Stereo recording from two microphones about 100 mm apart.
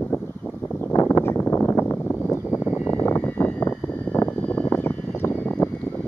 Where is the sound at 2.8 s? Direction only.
20° left (ahead or behind).